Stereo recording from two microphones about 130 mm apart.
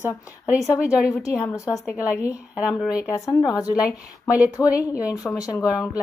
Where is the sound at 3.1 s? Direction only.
25° left (ahead or behind).